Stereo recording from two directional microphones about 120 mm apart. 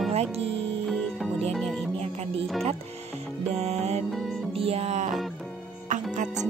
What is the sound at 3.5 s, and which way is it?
Music, 65° right (ahead or behind).